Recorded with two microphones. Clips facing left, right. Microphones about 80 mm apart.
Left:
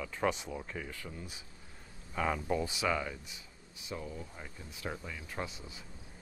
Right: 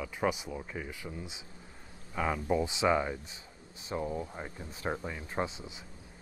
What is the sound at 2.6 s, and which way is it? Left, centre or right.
Speech, right.